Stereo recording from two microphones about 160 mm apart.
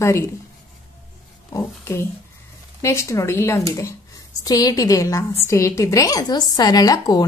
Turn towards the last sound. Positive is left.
turn(degrees=25)  # may be behind; listen again after turning